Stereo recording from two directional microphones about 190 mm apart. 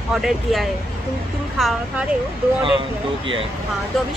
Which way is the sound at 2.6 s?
25° right (ahead or behind).